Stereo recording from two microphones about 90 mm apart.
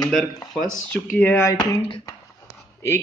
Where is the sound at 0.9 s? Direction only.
20° left (ahead or behind).